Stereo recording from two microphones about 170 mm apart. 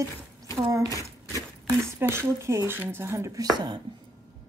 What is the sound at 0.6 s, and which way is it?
Speech, 20° right (ahead or behind).